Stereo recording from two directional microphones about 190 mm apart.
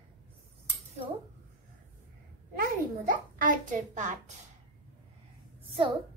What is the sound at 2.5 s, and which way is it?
A child's voice, 45° right (ahead or behind).